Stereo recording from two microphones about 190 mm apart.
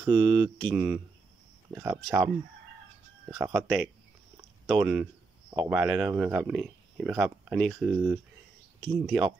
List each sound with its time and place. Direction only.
0.0 s mantra: 25° right (ahead or behind)
0.7 s speech: 5° right (ahead or behind)
3.6 s speech: 5° right (ahead or behind)